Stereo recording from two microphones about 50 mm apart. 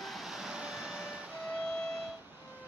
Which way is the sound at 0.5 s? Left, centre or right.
Centre.